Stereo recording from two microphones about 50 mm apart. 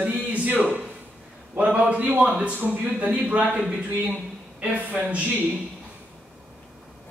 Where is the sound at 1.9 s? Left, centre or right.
Right.